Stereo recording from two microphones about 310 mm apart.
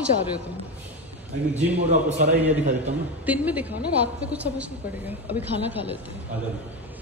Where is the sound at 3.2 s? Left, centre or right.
Centre.